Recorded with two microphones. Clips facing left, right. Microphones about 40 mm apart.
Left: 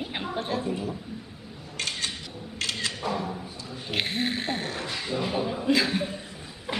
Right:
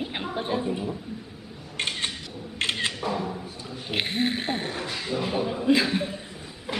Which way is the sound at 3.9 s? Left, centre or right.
Centre.